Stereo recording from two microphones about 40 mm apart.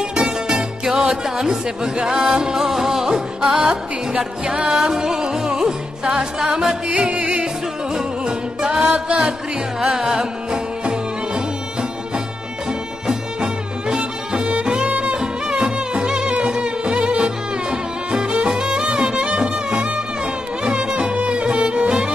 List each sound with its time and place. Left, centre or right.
0.1 s music: centre
2.6 s music: centre
4.6 s music: centre
6.9 s music: right
13.0 s music: right
14.9 s music: right
15.1 s music: right